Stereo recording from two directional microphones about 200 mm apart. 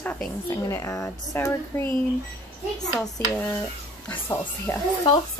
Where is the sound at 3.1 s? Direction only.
15° left (ahead or behind).